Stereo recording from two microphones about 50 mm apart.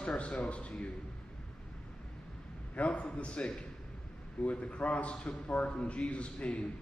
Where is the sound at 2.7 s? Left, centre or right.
Left.